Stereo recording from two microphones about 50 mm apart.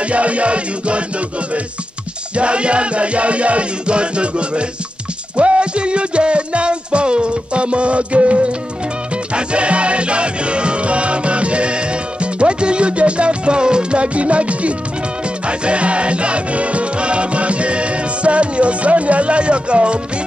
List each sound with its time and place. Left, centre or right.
0.0 s music: right
2.3 s music: right